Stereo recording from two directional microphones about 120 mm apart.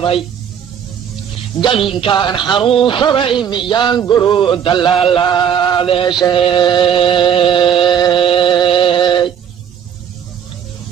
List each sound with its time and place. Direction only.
0.0 s a man's voice: 45° left (ahead or behind)
1.6 s a man's voice: 45° left (ahead or behind)
5.0 s music: 45° left (ahead or behind)